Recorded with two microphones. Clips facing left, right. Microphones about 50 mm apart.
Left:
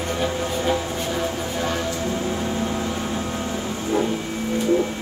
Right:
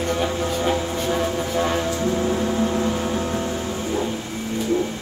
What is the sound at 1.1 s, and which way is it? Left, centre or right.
Music, centre.